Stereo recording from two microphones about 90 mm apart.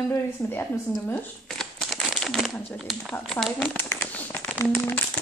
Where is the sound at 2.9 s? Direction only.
5° right (ahead or behind).